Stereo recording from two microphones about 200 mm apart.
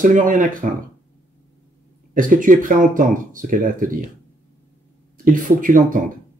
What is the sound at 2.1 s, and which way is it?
Speech, 40° right (ahead or behind).